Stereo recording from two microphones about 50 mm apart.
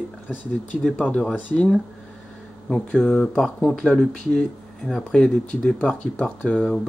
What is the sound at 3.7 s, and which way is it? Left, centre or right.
Speech, centre.